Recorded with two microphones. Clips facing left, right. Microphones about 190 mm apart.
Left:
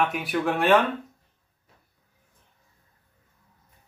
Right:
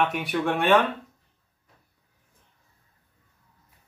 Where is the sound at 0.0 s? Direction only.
Centre (ahead or behind).